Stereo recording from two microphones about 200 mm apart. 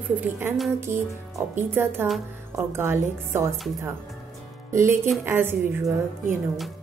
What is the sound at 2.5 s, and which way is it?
A woman's voice, 10° right (ahead or behind).